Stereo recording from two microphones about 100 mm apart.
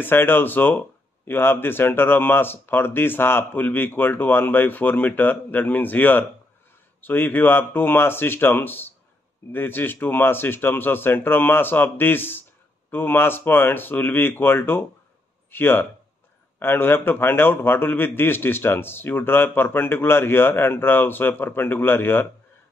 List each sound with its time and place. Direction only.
0.0 s speech: 20° left (ahead or behind)